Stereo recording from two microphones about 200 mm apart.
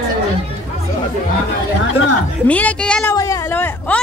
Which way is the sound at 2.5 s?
5° left (ahead or behind).